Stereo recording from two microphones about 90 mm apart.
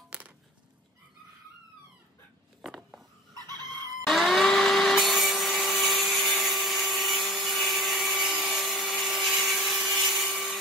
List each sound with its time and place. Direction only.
3.3 s chicken: 50° right (ahead or behind)
4.0 s wood: centre (ahead or behind)